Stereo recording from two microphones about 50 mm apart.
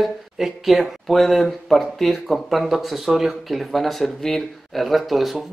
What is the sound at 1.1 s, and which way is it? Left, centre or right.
Speech, centre.